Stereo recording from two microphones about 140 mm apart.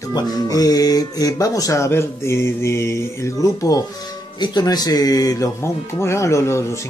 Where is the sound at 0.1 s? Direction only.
25° left (ahead or behind).